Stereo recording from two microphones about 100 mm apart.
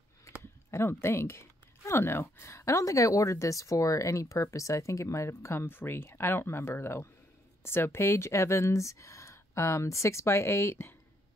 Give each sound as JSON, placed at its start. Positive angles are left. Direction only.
{"t": 0.7, "sound": "speech", "side_deg": 25}